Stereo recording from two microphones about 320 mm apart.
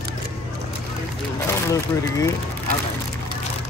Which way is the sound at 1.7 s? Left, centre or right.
Centre.